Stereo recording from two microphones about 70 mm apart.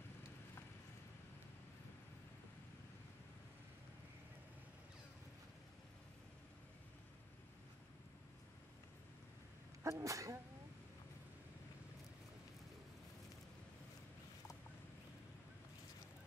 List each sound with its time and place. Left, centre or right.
9.8 s speech: right